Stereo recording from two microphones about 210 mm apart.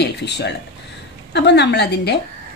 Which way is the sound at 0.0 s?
50° left (ahead or behind).